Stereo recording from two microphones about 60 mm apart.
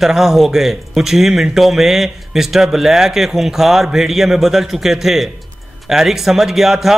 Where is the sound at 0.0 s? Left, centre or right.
Centre.